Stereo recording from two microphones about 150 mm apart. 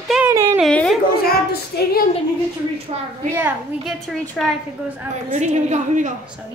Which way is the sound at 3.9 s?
Centre (ahead or behind).